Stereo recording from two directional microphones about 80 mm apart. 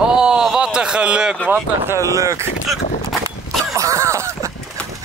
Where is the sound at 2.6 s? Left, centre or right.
Centre.